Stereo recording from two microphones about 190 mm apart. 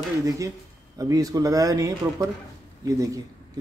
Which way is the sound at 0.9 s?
20° right (ahead or behind).